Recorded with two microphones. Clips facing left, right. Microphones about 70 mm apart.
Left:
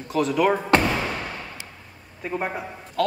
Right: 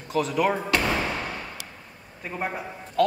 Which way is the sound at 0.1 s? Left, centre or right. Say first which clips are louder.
Left 3 dB; centre.